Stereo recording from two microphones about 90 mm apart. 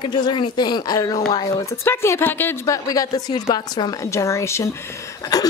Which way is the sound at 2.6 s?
40° left (ahead or behind).